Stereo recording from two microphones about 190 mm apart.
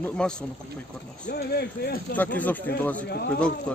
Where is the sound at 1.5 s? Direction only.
60° left (ahead or behind).